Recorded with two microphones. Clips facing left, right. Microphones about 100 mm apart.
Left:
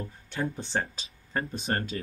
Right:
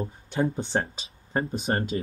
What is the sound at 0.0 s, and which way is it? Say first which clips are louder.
Speech: right 6 dB; 20° right (ahead or behind).